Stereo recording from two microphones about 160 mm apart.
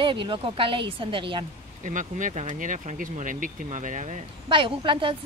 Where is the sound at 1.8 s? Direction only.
55° right (ahead or behind).